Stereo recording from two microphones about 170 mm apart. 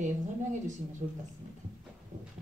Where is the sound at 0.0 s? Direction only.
45° right (ahead or behind).